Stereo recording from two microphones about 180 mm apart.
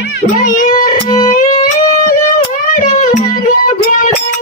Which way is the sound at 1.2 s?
45° left (ahead or behind).